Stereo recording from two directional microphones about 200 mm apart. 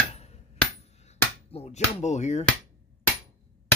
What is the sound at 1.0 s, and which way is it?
Speech, 30° left (ahead or behind).